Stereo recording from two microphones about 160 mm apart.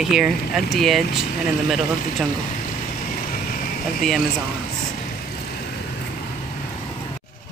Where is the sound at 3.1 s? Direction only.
60° left (ahead or behind).